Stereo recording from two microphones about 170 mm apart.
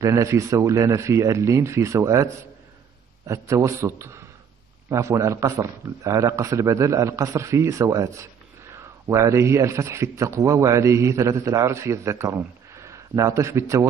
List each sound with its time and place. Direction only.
0.0 s a man's voice: 15° right (ahead or behind)
3.3 s a man's voice: 20° right (ahead or behind)